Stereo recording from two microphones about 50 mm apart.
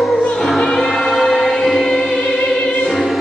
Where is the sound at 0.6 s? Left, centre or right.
Centre.